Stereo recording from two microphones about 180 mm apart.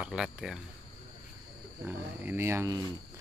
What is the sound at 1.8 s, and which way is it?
Speech, 10° right (ahead or behind).